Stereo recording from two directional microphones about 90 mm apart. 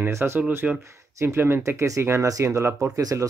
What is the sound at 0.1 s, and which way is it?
Speech, 30° right (ahead or behind).